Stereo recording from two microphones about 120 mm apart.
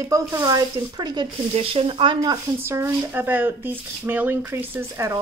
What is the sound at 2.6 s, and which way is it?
Speech, 20° right (ahead or behind).